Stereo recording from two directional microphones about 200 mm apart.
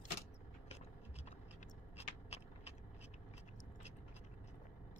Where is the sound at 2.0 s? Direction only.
30° left (ahead or behind).